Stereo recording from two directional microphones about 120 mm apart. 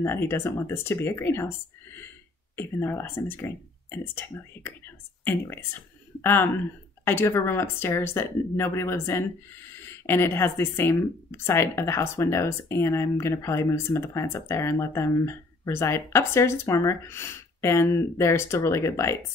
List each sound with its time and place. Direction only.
0.0 s speech: 20° left (ahead or behind)